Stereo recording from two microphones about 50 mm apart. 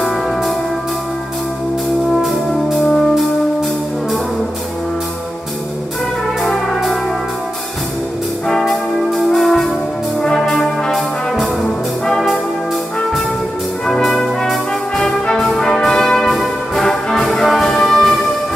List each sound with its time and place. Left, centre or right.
2.0 s brass instrument: centre
6.4 s music: centre
8.5 s brass instrument: centre
13.8 s brass instrument: centre